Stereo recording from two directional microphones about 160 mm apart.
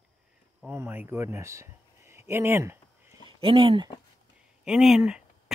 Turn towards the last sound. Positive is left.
turn(degrees=-5)  # may be behind; listen again after turning